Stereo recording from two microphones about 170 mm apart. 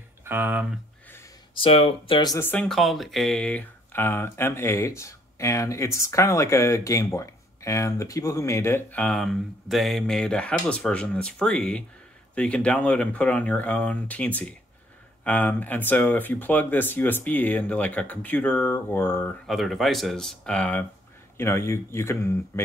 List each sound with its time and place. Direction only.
0.2 s speech: 10° right (ahead or behind)
1.5 s speech: 30° left (ahead or behind)
2.3 s speech: 10° left (ahead or behind)
19.4 s speech: centre (ahead or behind)